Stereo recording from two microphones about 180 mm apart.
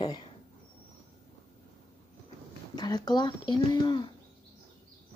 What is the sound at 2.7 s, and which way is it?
Speech, 25° left (ahead or behind).